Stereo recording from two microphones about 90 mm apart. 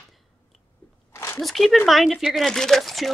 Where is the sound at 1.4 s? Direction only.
Centre (ahead or behind).